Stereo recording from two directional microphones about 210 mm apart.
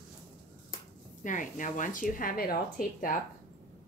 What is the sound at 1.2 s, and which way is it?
Speech, 40° left (ahead or behind).